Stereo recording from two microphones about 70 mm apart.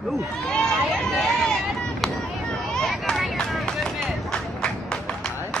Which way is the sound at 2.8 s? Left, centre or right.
Centre.